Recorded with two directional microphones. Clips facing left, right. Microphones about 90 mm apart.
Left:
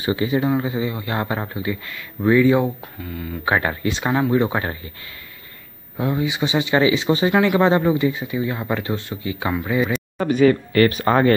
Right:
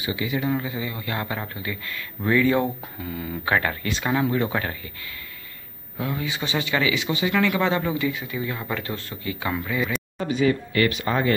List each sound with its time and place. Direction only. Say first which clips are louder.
0.0 s a man's voice: left 6 dB; 35° left (ahead or behind); by 2.7 s 15° left (ahead or behind)
2.8 s speech: left 1 dB; centre (ahead or behind)
3.4 s speech: left 3 dB; 20° left (ahead or behind)
5.9 s speech: left 6 dB; 25° left (ahead or behind)
10.1 s speech: left 7 dB; 55° left (ahead or behind)